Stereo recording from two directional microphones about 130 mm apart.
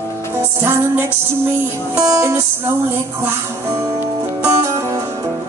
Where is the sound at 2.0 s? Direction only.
25° right (ahead or behind).